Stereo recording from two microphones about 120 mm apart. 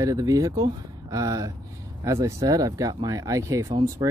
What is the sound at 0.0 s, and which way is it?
Speech, 30° right (ahead or behind).